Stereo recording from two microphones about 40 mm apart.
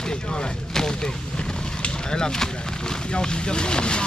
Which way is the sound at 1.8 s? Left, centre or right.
Centre.